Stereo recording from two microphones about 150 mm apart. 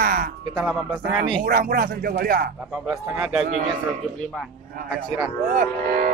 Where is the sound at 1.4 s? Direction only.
70° right (ahead or behind).